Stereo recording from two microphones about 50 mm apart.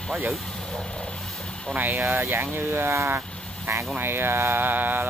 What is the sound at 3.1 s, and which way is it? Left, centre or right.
Sheep, right.